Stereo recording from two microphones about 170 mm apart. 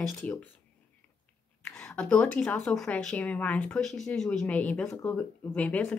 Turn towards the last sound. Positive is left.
turn(degrees=10)  # may be behind; listen again after turning